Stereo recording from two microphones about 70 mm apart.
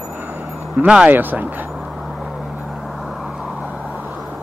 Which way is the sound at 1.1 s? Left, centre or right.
Right.